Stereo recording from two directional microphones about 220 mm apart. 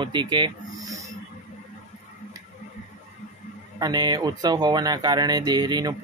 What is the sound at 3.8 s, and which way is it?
Speech, 20° right (ahead or behind).